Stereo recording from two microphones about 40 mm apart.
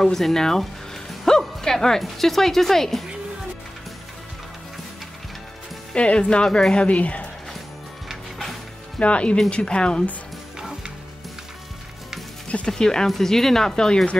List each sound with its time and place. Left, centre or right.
0.0 s music: centre
1.6 s speech: centre
5.9 s speech: left
9.0 s speech: left
10.6 s music: centre
12.6 s speech: centre